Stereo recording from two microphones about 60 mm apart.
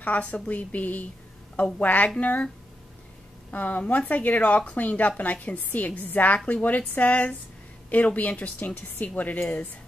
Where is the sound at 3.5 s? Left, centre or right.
Left.